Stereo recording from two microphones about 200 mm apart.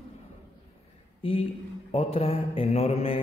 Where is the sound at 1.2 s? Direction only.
25° left (ahead or behind).